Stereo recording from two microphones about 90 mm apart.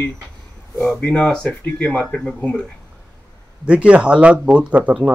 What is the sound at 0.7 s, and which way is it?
Speech, 10° left (ahead or behind).